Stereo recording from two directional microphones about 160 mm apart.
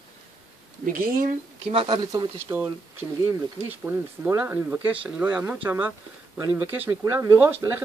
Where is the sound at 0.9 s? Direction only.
60° right (ahead or behind).